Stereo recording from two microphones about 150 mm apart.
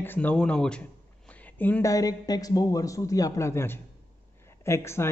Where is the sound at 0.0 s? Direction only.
10° left (ahead or behind).